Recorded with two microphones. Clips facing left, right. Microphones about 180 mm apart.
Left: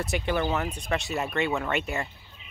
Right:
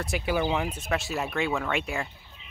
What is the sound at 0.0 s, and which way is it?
Speech, 5° right (ahead or behind).